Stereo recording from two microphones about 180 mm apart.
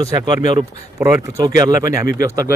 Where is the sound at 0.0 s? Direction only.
20° right (ahead or behind).